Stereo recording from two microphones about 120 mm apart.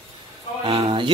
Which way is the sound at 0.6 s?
55° right (ahead or behind).